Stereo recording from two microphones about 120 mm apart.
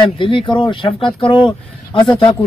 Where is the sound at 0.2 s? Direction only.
45° left (ahead or behind).